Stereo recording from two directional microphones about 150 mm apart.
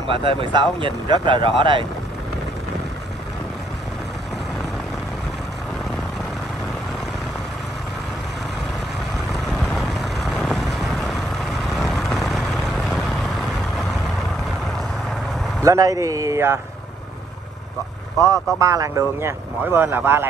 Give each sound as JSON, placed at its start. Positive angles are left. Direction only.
{"t": 0.1, "sound": "speech", "side_deg": -35}
{"t": 9.3, "sound": "vehicle", "side_deg": 0}
{"t": 15.6, "sound": "speech", "side_deg": -20}
{"t": 18.2, "sound": "speech", "side_deg": -20}